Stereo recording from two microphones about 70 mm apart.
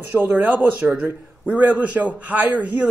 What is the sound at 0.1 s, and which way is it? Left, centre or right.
Speech, right.